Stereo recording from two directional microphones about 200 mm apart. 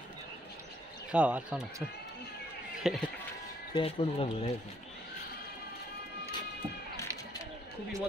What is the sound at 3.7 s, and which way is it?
Speech, 25° left (ahead or behind).